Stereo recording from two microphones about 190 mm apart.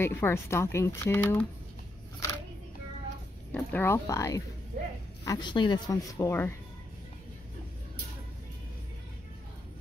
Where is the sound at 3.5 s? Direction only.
10° left (ahead or behind).